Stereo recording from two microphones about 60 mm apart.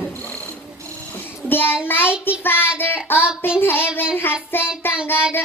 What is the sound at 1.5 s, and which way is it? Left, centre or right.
Child singing, left.